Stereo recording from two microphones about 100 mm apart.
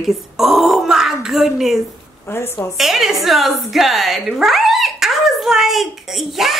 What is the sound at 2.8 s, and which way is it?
A woman's voice, centre (ahead or behind).